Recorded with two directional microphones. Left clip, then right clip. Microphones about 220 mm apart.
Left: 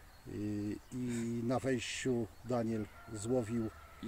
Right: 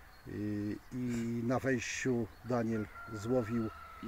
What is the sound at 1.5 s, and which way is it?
Speech, 20° right (ahead or behind).